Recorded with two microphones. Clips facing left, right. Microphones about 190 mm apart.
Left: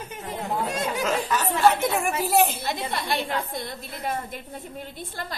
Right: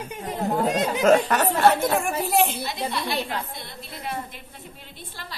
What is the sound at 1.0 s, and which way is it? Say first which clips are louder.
Speech: right 9 dB; 60° right (ahead or behind).